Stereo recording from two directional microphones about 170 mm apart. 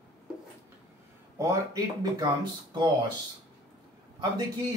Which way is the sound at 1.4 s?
20° right (ahead or behind).